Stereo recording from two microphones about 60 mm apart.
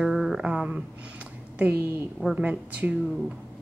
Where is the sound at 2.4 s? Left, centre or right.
Right.